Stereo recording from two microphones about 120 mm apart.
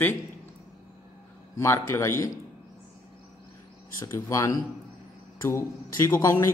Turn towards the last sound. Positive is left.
turn(degrees=25)  # may be behind; listen again after turning